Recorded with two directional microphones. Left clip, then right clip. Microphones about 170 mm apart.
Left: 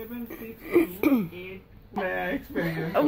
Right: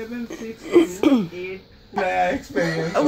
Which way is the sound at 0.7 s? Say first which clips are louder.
Right 6 dB; 10° right (ahead or behind).